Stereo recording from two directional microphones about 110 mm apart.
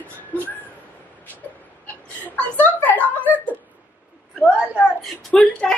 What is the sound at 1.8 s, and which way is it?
Chuckle, 15° left (ahead or behind).